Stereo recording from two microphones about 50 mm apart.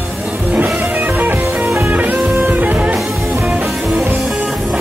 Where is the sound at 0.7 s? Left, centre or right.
Centre.